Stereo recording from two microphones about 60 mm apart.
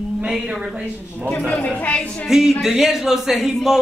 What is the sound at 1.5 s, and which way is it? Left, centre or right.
Speech, left.